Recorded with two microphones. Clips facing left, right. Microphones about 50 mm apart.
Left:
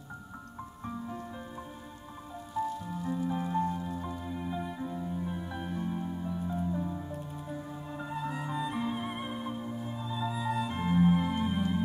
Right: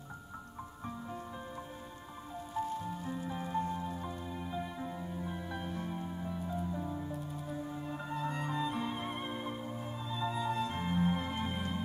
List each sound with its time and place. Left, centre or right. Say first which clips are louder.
0.8 s music: left 4 dB; centre
2.6 s music: left 4 dB; right
3.3 s music: left 4 dB; centre
3.7 s music: left 2 dB; centre
4.0 s music: left 4 dB; centre